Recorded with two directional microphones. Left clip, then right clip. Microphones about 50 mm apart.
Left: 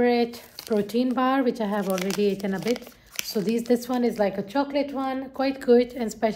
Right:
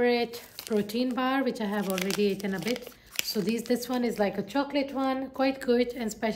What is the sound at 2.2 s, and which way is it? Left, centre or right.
Speech, centre.